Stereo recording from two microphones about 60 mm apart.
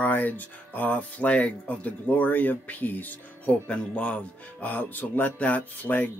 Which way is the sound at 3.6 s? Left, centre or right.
Centre.